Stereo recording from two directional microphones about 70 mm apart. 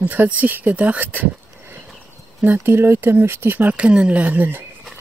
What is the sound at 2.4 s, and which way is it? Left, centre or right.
Speech, right.